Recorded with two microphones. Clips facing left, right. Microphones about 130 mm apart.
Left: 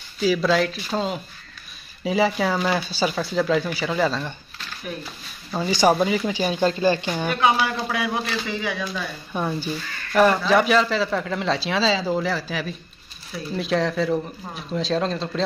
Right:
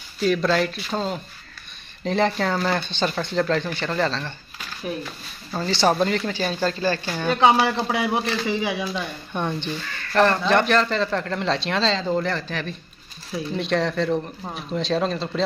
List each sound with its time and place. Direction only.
0.2 s speech: 5° left (ahead or behind)
5.5 s speech: 10° left (ahead or behind)
7.3 s speech: 25° right (ahead or behind)
9.3 s speech: 5° left (ahead or behind)